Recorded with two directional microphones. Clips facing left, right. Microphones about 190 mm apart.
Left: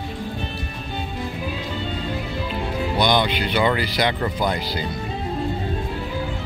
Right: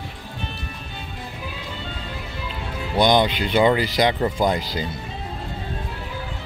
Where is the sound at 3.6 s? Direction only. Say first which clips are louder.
Right 4 dB; 20° right (ahead or behind).